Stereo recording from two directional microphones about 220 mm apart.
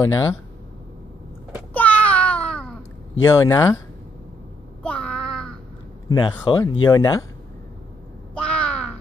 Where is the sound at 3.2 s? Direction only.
15° left (ahead or behind).